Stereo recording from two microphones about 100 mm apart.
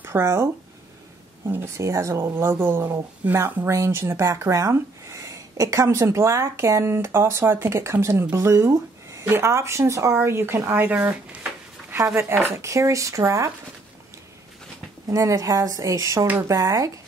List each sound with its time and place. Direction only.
0.0 s speech: 25° right (ahead or behind)
1.5 s speech: 25° right (ahead or behind)
15.0 s speech: 35° right (ahead or behind)